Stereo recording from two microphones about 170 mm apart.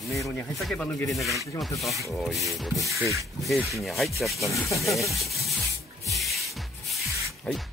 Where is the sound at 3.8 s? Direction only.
Centre (ahead or behind).